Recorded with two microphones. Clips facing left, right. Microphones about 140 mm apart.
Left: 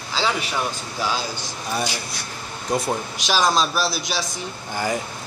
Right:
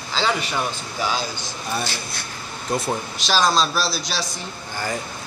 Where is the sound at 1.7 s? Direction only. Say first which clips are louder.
Left 1 dB; 10° left (ahead or behind).